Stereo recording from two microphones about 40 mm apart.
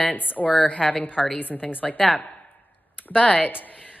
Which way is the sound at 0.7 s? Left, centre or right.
Left.